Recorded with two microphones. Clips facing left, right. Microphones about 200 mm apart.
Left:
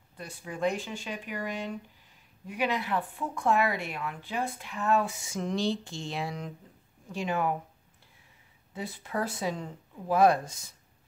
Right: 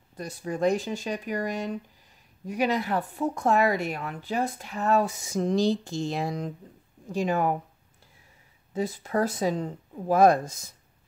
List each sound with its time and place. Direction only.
0.1 s speech: 40° right (ahead or behind)
8.7 s speech: 40° right (ahead or behind)